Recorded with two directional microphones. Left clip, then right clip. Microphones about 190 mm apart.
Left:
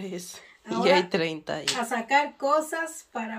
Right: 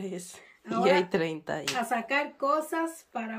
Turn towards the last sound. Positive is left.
turn(degrees=-10)  # may be behind; listen again after turning